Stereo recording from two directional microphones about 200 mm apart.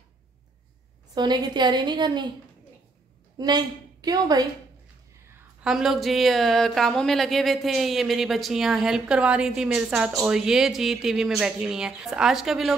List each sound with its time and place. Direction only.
1.1 s a woman's voice: 20° right (ahead or behind)
3.3 s a woman's voice: 20° right (ahead or behind)
5.6 s speech: centre (ahead or behind)